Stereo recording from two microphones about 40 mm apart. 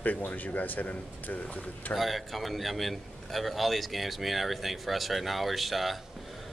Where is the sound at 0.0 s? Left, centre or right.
Left.